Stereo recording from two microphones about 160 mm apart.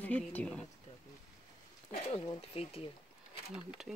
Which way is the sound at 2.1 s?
40° left (ahead or behind).